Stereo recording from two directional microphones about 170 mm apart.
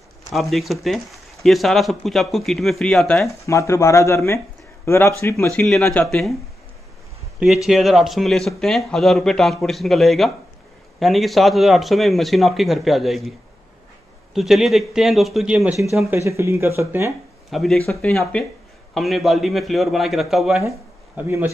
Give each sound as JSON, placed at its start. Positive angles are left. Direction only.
{"t": 0.3, "sound": "speech", "side_deg": 0}
{"t": 3.4, "sound": "a man's voice", "side_deg": 15}
{"t": 5.6, "sound": "speech", "side_deg": 0}
{"t": 7.3, "sound": "speech", "side_deg": 0}
{"t": 14.3, "sound": "speech", "side_deg": 0}
{"t": 16.1, "sound": "speech", "side_deg": -15}
{"t": 17.5, "sound": "speech", "side_deg": 0}